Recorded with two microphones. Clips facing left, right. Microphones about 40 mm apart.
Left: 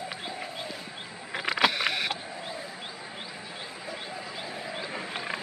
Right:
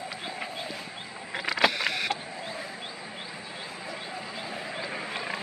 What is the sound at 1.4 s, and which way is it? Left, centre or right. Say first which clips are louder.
Vehicle: even; left.